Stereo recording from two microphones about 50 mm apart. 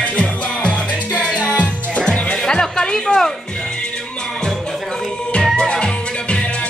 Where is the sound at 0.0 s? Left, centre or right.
Left.